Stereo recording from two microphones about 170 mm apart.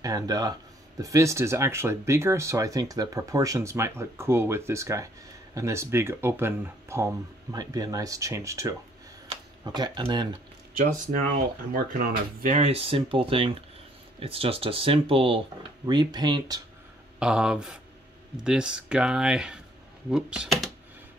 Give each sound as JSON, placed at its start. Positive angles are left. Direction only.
{"t": 0.0, "sound": "speech", "side_deg": -20}
{"t": 10.8, "sound": "speech", "side_deg": -50}
{"t": 17.2, "sound": "speech", "side_deg": -5}